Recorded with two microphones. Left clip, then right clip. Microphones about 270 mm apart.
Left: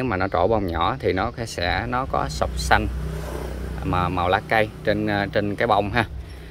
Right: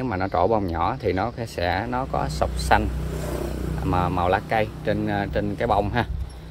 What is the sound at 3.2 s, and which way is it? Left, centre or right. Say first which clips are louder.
Vehicle: right 3 dB; right.